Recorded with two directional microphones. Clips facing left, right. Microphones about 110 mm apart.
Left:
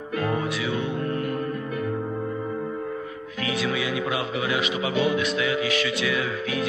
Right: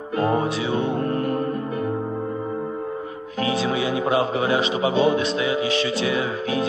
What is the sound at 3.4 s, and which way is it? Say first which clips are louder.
Speech: right 4 dB; 30° right (ahead or behind).